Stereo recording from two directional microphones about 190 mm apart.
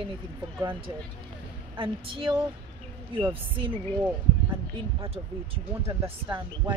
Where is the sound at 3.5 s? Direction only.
25° right (ahead or behind).